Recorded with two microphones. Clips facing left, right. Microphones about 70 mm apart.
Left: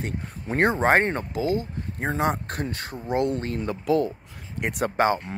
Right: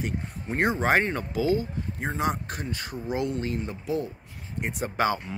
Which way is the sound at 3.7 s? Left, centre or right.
Left.